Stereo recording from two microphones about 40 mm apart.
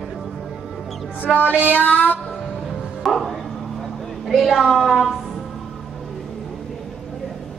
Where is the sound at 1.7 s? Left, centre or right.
Left.